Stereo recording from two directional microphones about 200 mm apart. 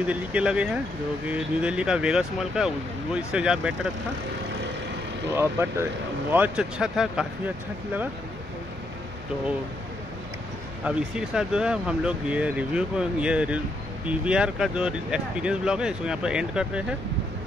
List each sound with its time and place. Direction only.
0.0 s speech: 5° right (ahead or behind)
5.3 s speech: 10° right (ahead or behind)
10.8 s speech: 5° right (ahead or behind)